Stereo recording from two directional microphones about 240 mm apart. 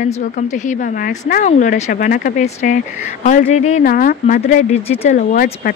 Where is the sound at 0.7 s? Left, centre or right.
Left.